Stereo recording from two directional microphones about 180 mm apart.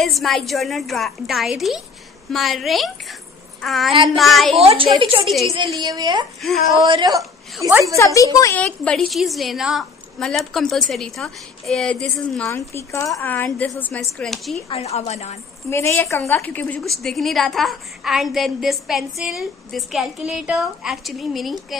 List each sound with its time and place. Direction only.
0.0 s a woman's voice: centre (ahead or behind)
3.9 s a woman's voice: 30° right (ahead or behind)
4.2 s a woman's voice: centre (ahead or behind)
4.6 s a woman's voice: 30° right (ahead or behind)
8.0 s speech: 20° left (ahead or behind)
8.5 s a woman's voice: 5° left (ahead or behind)
14.7 s a woman's voice: 35° left (ahead or behind)
15.7 s a woman's voice: 15° left (ahead or behind); by 21.7 s centre (ahead or behind)